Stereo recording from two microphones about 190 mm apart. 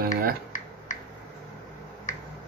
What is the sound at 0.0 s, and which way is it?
Finger snapping, 50° right (ahead or behind).